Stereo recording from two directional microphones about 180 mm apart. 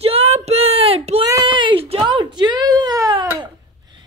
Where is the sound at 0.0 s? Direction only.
35° right (ahead or behind).